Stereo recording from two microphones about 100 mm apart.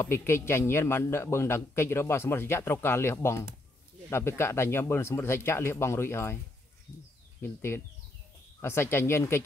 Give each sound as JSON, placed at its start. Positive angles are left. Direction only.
{"t": 0.0, "sound": "a man's voice", "side_deg": 25}
{"t": 7.4, "sound": "a man's voice", "side_deg": 25}